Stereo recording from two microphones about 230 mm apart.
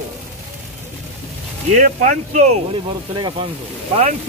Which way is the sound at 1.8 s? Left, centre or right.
Right.